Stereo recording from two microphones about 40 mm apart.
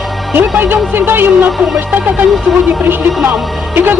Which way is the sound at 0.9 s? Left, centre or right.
Right.